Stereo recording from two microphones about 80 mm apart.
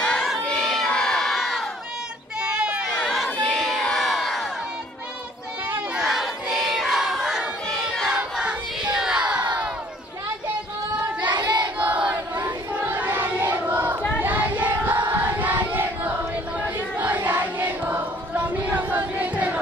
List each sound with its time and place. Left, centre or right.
0.0 s a sound: centre
0.5 s crowd: centre
2.6 s a sound: centre
2.9 s crowd: centre
5.9 s battle cry: centre
8.2 s child singing: centre
8.9 s a sound: centre
11.2 s child singing: right
11.8 s choir: centre
14.2 s child singing: right
15.2 s battle cry: right
16.6 s choir: right